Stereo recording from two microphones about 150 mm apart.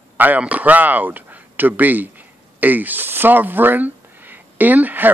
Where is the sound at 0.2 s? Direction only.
10° right (ahead or behind).